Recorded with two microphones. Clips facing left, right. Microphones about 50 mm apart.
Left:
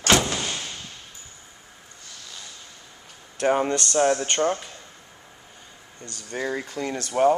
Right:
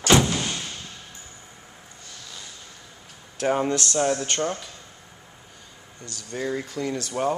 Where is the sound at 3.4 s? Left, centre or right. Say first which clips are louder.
Left 1 dB; centre.